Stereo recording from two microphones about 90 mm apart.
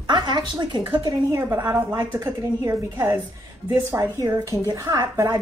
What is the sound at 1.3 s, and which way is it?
A woman's voice, 30° right (ahead or behind).